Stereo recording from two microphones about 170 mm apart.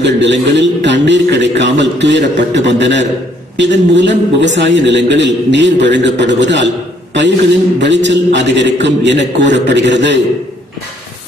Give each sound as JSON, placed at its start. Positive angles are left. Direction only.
{"t": 0.0, "sound": "a man's voice", "side_deg": -90}
{"t": 7.8, "sound": "a man's voice", "side_deg": -90}